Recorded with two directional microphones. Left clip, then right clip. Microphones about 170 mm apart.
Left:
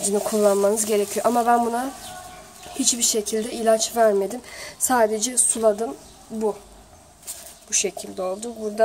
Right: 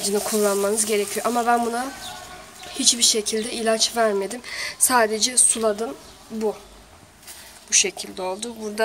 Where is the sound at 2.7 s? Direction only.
50° left (ahead or behind).